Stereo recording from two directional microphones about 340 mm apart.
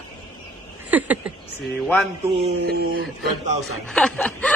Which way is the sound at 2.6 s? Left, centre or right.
Right.